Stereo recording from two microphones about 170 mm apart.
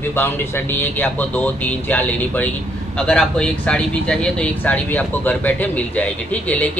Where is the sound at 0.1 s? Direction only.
10° left (ahead or behind).